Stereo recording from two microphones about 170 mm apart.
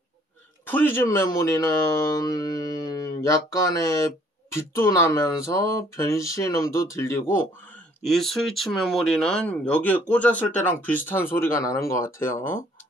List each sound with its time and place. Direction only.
0.7 s speech: 10° left (ahead or behind)
8.0 s speech: centre (ahead or behind)